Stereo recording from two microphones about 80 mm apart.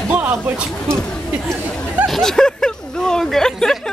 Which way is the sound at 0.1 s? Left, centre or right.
Centre.